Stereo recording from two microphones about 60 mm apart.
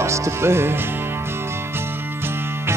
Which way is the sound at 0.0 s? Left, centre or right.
Right.